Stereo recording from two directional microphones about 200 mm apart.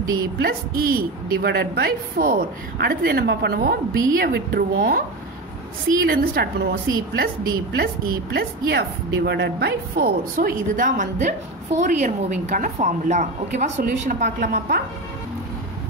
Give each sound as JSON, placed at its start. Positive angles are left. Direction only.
{"t": 0.4, "sound": "a woman's voice", "side_deg": -50}
{"t": 7.7, "sound": "a woman's voice", "side_deg": -55}